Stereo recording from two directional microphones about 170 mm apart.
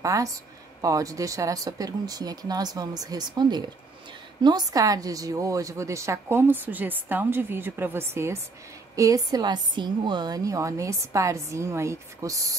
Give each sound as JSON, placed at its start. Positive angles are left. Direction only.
{"t": 0.0, "sound": "a woman's voice", "side_deg": -20}